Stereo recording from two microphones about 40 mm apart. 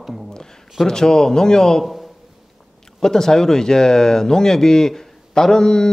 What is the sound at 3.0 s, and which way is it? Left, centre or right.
Speech, centre.